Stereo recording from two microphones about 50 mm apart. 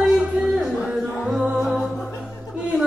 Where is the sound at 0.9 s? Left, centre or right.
Centre.